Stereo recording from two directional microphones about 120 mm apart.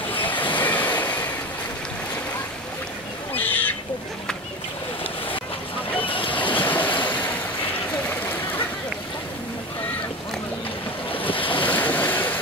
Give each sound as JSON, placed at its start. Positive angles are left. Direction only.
{"t": 0.1, "sound": "waves", "side_deg": 15}
{"t": 3.3, "sound": "a sound", "side_deg": 15}
{"t": 6.0, "sound": "boat", "side_deg": 45}
{"t": 6.3, "sound": "waves", "side_deg": 15}
{"t": 11.2, "sound": "waves", "side_deg": 45}
{"t": 11.6, "sound": "waves", "side_deg": 15}